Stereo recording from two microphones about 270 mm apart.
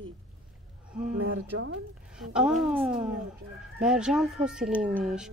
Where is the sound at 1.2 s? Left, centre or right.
Right.